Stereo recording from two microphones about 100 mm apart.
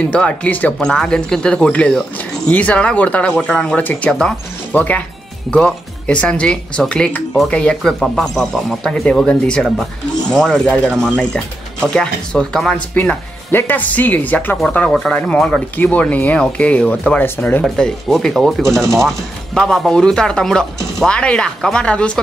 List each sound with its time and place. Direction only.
0.0 s speech: 10° left (ahead or behind)